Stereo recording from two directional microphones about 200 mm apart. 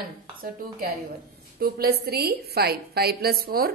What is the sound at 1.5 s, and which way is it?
A woman's voice, 50° right (ahead or behind).